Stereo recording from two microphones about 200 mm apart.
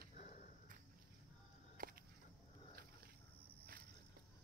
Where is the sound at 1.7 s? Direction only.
45° right (ahead or behind).